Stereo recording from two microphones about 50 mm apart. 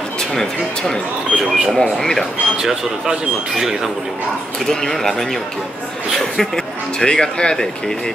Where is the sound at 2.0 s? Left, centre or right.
Centre.